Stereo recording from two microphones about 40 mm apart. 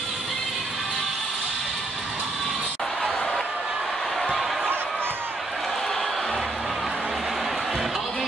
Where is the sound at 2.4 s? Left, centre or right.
Centre.